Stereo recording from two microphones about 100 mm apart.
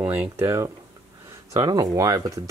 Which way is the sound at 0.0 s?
20° right (ahead or behind).